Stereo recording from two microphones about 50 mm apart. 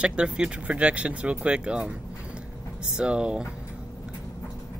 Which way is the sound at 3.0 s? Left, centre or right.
Centre.